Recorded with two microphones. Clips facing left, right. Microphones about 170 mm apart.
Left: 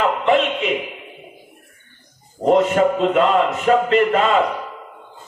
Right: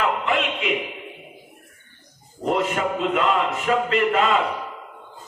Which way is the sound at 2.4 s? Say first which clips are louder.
Left 7 dB; 55° left (ahead or behind).